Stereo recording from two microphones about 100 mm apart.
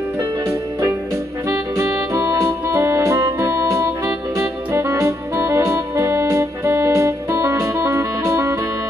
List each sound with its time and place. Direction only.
1.8 s music: 30° right (ahead or behind)